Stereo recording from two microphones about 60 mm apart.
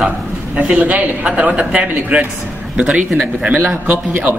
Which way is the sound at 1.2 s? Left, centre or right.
Centre.